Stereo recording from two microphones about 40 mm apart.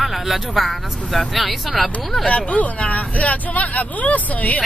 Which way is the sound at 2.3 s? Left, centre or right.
Left.